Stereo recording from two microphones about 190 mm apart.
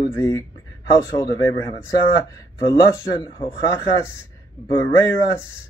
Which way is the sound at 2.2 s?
15° left (ahead or behind).